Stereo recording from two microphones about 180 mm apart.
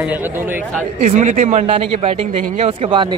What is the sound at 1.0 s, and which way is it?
Speech, 40° right (ahead or behind).